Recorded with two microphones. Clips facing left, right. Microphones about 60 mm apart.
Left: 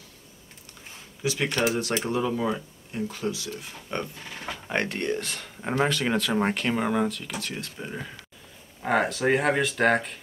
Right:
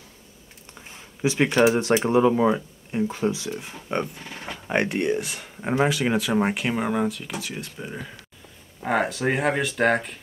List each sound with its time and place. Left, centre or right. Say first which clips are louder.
1.2 s speech: right 7 dB; right
4.2 s music: right 1 dB; centre
4.6 s speech: right 5 dB; centre